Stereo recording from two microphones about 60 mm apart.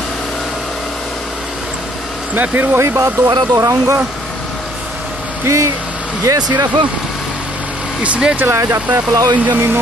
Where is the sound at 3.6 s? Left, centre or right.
Right.